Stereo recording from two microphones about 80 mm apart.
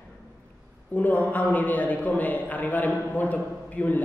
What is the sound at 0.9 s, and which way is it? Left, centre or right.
A man's voice, left.